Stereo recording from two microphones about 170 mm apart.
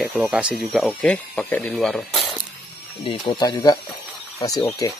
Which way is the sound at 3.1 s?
25° left (ahead or behind).